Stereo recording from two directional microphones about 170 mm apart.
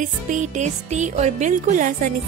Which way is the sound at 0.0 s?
45° right (ahead or behind).